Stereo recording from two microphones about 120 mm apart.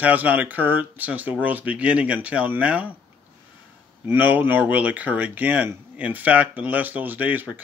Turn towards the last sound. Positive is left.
turn(degrees=-15)  # may be behind; listen again after turning